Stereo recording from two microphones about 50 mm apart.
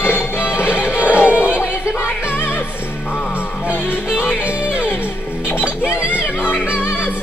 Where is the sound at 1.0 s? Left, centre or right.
Left.